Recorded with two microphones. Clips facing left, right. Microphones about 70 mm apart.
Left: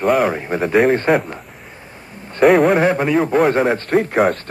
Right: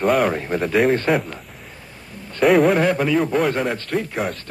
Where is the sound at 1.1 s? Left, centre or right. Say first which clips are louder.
Left 4 dB; left.